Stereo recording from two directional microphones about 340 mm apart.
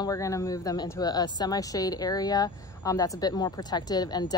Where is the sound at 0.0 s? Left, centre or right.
Centre.